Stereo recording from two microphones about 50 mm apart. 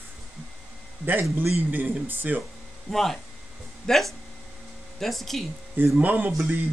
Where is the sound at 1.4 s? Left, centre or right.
Right.